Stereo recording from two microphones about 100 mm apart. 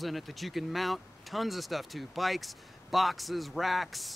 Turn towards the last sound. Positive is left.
turn(degrees=0)  # may be behind; listen again after turning